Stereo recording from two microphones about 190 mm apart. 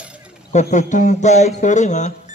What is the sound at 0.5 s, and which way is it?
A man's voice, 40° left (ahead or behind).